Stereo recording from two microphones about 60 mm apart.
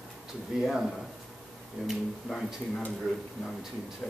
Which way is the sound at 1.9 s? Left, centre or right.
Centre.